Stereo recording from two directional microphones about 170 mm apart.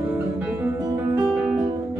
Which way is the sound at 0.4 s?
10° right (ahead or behind).